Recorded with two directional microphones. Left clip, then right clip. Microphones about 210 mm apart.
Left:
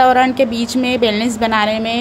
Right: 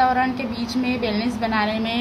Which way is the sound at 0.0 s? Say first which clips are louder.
Left 8 dB; 40° left (ahead or behind).